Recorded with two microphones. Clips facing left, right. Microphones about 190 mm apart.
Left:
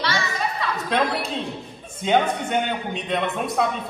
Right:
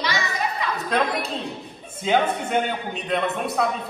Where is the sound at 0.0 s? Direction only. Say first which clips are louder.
Even; 15° right (ahead or behind).